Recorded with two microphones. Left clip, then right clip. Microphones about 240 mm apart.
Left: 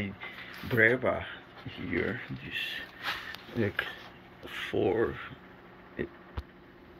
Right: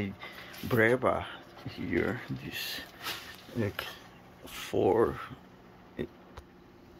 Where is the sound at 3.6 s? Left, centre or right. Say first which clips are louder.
Left 3 dB; centre.